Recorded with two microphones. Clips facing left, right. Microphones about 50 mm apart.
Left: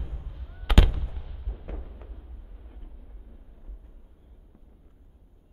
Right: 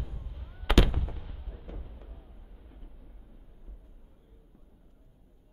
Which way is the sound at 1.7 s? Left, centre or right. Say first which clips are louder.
Left 5 dB; left.